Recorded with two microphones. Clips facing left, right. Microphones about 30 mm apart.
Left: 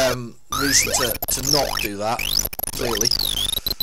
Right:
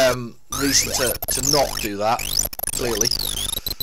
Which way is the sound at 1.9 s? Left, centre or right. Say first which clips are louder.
Right 3 dB; centre.